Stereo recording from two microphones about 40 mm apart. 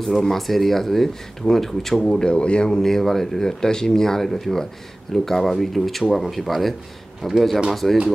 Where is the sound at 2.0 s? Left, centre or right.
Centre.